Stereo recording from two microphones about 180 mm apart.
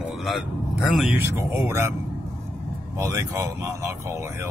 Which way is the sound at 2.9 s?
15° right (ahead or behind).